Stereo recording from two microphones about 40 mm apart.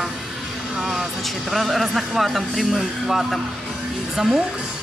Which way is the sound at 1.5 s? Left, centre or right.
Centre.